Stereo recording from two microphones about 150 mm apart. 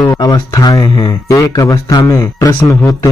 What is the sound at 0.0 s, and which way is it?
Speech, 25° left (ahead or behind).